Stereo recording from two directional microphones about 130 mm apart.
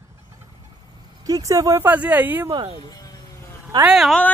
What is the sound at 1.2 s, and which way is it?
Speech, 25° right (ahead or behind).